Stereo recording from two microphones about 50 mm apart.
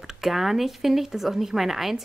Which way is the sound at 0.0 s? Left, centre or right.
Centre.